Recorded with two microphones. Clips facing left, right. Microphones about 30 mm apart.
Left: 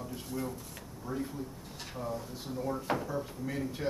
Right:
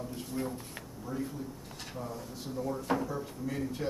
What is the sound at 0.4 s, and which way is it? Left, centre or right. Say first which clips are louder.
Speech: right 2 dB; right.